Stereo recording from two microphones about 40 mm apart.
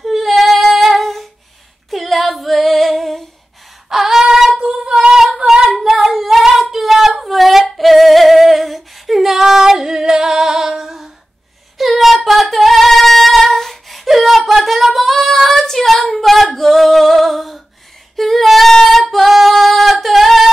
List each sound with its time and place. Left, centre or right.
0.0 s female singing: centre
3.9 s a sound: centre
4.6 s female singing: centre
5.4 s a sound: right
5.8 s female singing: centre
11.8 s female singing: centre
16.5 s music: centre
18.1 s female singing: centre
19.3 s singing: centre